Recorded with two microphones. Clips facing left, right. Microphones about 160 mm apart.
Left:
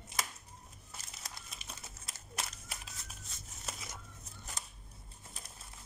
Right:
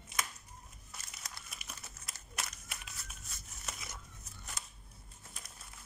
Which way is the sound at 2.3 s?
30° left (ahead or behind).